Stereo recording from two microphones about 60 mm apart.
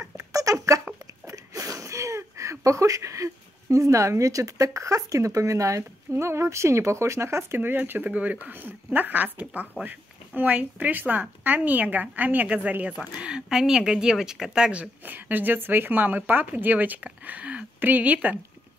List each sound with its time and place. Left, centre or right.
0.0 s a sound: right
3.7 s speech: right
8.1 s speech: right
13.2 s speech: centre
15.0 s speech: right